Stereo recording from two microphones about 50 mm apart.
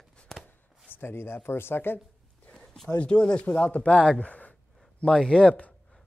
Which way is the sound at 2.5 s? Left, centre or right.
Centre.